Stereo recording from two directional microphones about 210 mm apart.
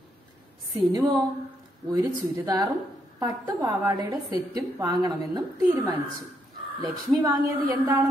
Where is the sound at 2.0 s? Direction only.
15° right (ahead or behind).